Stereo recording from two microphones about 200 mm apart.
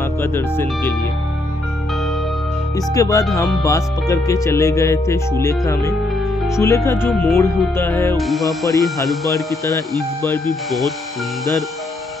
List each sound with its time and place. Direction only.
0.2 s speech: 10° left (ahead or behind)
2.9 s speech: 15° left (ahead or behind)
8.2 s speech: centre (ahead or behind)